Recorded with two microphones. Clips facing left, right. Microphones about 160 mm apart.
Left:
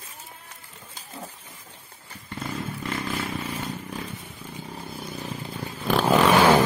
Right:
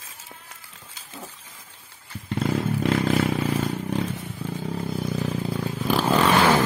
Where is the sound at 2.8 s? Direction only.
90° right.